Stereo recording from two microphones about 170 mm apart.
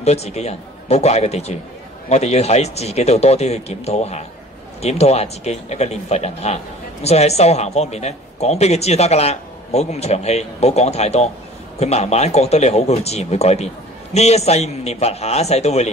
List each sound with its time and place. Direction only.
0.0 s speech: 40° left (ahead or behind)